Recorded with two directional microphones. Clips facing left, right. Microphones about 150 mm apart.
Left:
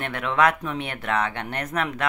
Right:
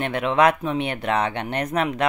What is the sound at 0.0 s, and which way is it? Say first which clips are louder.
Speech: right 3 dB; 20° right (ahead or behind).